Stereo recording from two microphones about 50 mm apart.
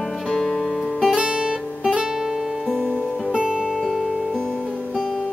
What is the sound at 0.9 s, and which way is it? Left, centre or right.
Music, centre.